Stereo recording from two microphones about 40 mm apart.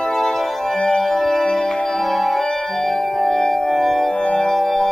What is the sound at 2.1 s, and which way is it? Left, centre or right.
Music, centre.